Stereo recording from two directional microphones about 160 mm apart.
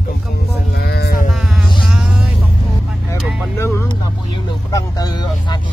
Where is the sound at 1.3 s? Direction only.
5° right (ahead or behind).